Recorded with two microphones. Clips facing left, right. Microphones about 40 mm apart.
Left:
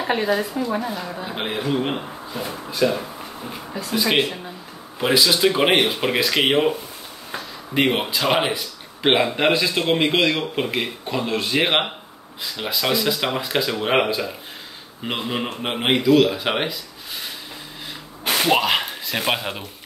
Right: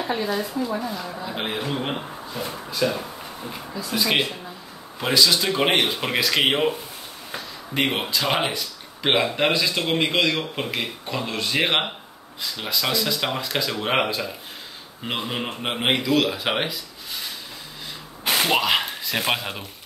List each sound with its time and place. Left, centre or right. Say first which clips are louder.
0.8 s a woman's voice: left 2 dB; left
1.3 s speech: left 4 dB; centre
18.2 s a sound: left 2 dB; centre